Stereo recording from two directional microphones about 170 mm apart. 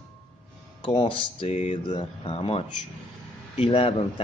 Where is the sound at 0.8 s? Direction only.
35° left (ahead or behind).